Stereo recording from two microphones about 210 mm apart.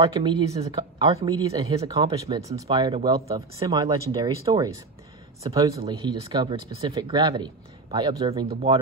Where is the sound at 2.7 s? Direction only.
25° right (ahead or behind).